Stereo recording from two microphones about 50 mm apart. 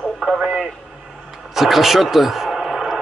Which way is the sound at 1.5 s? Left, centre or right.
Centre.